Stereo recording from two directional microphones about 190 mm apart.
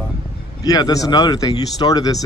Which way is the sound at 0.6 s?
20° left (ahead or behind).